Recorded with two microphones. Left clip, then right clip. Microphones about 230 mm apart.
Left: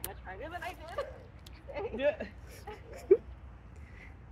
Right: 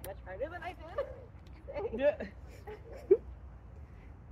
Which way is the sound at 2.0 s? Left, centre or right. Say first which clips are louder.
Right 1 dB; right.